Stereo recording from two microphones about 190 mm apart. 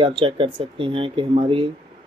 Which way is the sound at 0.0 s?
25° right (ahead or behind).